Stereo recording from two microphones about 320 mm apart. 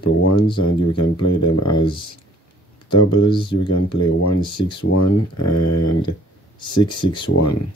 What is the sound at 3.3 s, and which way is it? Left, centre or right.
Speech, centre.